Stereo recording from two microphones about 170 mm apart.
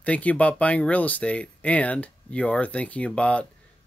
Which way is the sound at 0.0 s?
10° left (ahead or behind).